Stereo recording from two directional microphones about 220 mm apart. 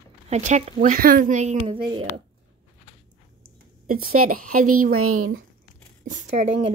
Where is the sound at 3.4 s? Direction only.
40° right (ahead or behind).